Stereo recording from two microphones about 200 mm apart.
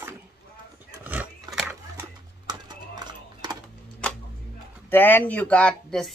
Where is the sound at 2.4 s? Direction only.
20° right (ahead or behind).